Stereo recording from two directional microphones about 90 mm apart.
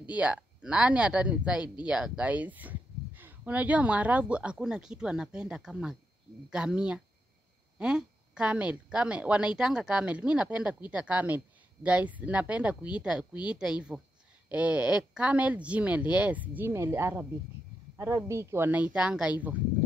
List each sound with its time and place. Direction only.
0.1 s a woman's voice: 15° right (ahead or behind)